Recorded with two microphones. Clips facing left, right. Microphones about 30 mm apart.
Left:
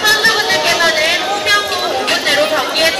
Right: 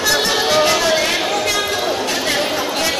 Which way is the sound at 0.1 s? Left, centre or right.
Left.